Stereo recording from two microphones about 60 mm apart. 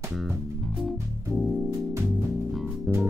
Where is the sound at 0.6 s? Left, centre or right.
Centre.